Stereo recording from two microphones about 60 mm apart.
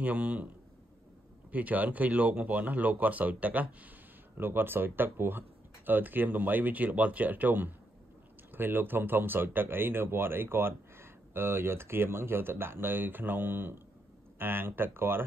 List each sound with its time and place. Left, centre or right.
0.0 s speech: right
1.5 s speech: right
4.4 s speech: right